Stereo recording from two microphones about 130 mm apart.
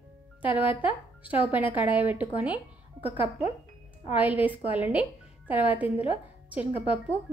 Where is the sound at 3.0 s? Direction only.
50° left (ahead or behind).